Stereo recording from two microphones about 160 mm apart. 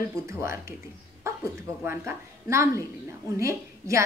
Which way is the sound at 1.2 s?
20° right (ahead or behind).